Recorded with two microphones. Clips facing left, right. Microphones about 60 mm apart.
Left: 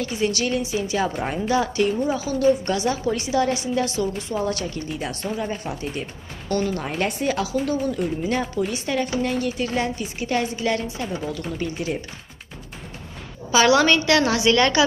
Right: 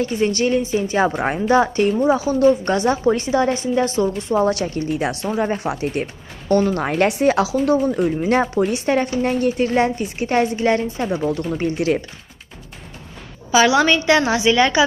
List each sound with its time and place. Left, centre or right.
0.1 s speech: right
2.0 s speech: right
2.3 s speech: right
3.1 s a woman's voice: right
3.8 s a woman's voice: right
5.6 s speech: right
6.5 s a woman's voice: right
10.7 s speech: right
11.2 s a woman's voice: right
11.7 s speech: right
13.5 s a woman's voice: centre